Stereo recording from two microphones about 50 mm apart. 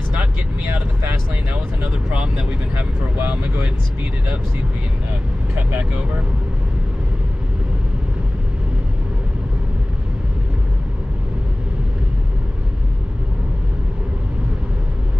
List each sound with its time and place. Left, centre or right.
1.5 s speech: right
5.6 s speech: right